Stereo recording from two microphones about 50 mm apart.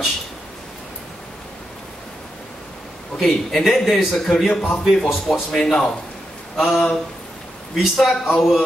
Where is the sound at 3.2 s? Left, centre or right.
Centre.